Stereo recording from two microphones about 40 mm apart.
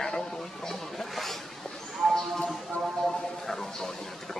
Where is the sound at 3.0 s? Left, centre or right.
Centre.